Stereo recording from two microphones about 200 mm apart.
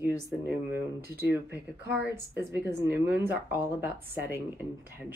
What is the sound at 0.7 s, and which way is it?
A woman's voice, 10° right (ahead or behind).